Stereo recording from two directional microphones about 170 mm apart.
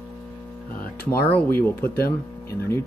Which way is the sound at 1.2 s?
10° left (ahead or behind).